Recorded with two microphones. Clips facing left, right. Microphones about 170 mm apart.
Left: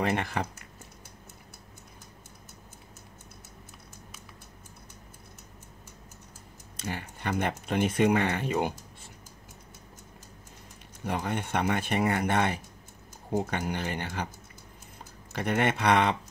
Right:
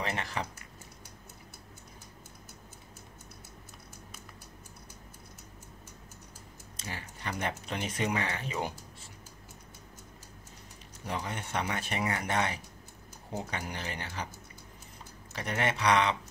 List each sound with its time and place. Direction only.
0.0 s speech: 55° left (ahead or behind)
6.8 s speech: 55° left (ahead or behind)
11.1 s speech: 60° left (ahead or behind)
15.3 s speech: 55° left (ahead or behind)